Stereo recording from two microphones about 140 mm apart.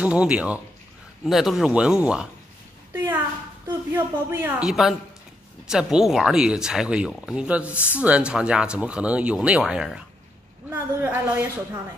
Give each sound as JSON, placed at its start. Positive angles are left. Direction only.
{"t": 0.0, "sound": "speech", "side_deg": -10}
{"t": 2.9, "sound": "a sound", "side_deg": -15}
{"t": 3.9, "sound": "speech", "side_deg": -15}
{"t": 4.6, "sound": "speech", "side_deg": 0}
{"t": 7.7, "sound": "speech", "side_deg": 15}
{"t": 8.0, "sound": "speech", "side_deg": -10}